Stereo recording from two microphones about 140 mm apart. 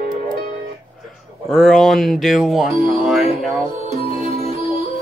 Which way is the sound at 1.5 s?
Centre (ahead or behind).